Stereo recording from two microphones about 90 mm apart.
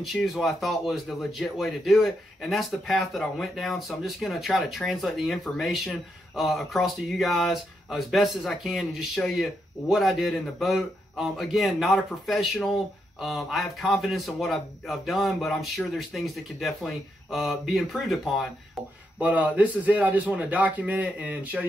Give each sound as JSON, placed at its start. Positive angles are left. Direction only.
{"t": 0.0, "sound": "speech", "side_deg": 0}
{"t": 19.1, "sound": "a man's voice", "side_deg": -15}